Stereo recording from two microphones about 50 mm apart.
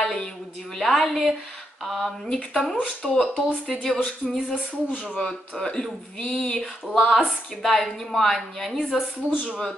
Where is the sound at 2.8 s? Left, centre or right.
Centre.